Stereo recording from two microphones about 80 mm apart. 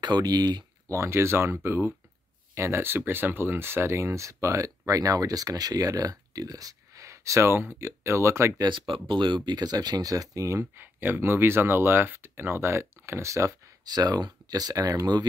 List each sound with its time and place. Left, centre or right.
0.0 s speech: right
0.8 s speech: right
8.5 s speech: right
10.6 s speech: right
13.8 s speech: right